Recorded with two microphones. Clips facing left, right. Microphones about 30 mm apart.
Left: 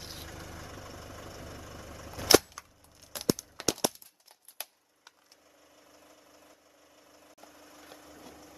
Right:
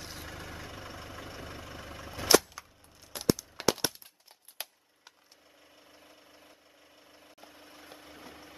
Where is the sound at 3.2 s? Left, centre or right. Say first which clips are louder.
Right 2 dB; centre.